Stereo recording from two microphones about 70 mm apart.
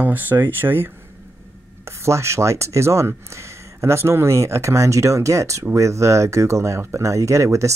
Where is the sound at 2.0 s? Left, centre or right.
Right.